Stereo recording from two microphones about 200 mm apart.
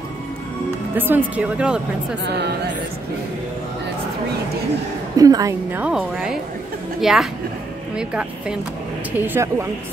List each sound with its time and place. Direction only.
0.9 s a woman's voice: 10° right (ahead or behind)
2.2 s speech: 60° right (ahead or behind)
5.1 s a woman's voice: 15° right (ahead or behind)